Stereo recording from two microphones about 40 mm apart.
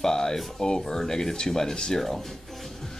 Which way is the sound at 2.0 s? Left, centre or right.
Centre.